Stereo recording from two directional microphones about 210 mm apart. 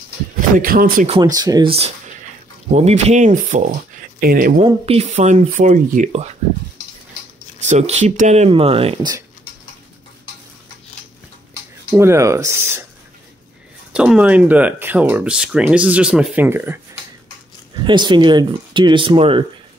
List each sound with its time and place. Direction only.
0.6 s speech: 45° right (ahead or behind)
1.2 s speech: 15° right (ahead or behind); by 4.6 s 45° right (ahead or behind)
4.6 s speech: 25° right (ahead or behind)
7.6 s speech: 35° right (ahead or behind)
11.9 s speech: 15° right (ahead or behind)
13.9 s speech: 5° right (ahead or behind)
17.8 s speech: 20° right (ahead or behind)